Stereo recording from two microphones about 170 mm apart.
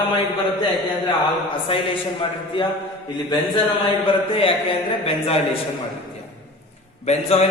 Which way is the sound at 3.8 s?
35° left (ahead or behind).